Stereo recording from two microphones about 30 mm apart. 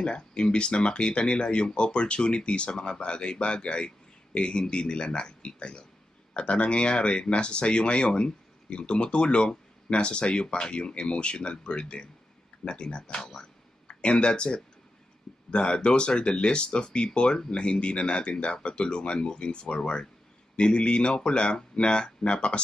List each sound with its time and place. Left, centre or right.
0.4 s speech: left